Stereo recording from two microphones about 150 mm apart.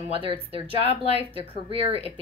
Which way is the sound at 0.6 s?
45° left (ahead or behind).